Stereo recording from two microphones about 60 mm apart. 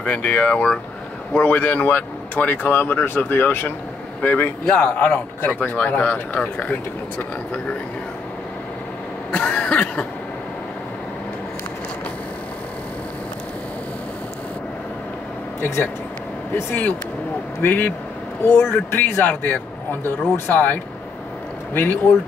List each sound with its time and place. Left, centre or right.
0.0 s speech: left
9.3 s cough: left
15.6 s speech: left
17.6 s speech: left
18.4 s speech: left